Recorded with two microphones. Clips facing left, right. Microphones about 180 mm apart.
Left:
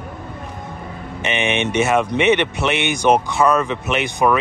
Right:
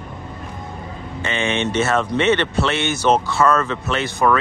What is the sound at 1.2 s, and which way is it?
Speech, 20° left (ahead or behind).